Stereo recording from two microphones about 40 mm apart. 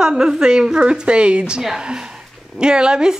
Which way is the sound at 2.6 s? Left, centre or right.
Right.